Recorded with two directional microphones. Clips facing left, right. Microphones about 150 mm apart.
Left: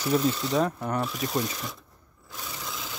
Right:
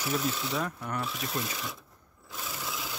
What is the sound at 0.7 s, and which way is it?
Speech, 35° left (ahead or behind).